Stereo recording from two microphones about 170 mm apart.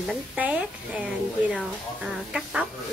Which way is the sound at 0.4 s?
10° right (ahead or behind).